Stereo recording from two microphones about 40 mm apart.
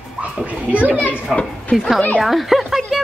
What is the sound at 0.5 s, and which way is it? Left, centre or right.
Speech, right.